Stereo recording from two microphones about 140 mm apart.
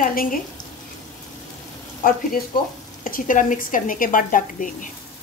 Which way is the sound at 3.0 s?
80° left.